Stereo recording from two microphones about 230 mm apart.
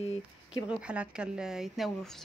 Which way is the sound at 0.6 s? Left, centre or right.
Centre.